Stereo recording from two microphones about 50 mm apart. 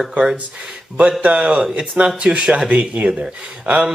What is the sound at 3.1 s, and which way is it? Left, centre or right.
Speech, centre.